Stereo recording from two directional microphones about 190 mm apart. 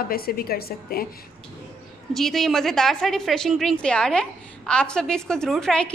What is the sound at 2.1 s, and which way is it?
A woman's voice, centre (ahead or behind).